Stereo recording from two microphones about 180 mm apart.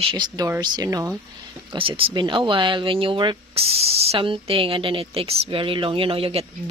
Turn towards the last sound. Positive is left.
turn(degrees=-35)  # may be behind; listen again after turning